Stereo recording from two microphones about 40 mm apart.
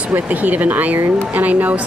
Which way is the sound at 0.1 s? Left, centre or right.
Right.